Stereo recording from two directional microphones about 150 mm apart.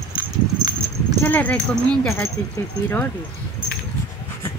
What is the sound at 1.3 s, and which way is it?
Speech, 10° left (ahead or behind).